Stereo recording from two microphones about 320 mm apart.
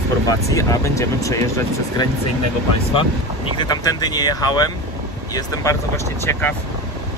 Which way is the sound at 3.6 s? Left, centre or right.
Centre.